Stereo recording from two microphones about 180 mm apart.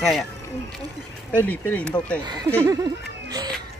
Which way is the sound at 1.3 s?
10° left (ahead or behind).